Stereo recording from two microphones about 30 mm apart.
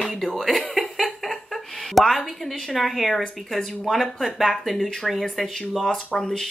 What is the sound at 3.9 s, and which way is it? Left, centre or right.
Speech, centre.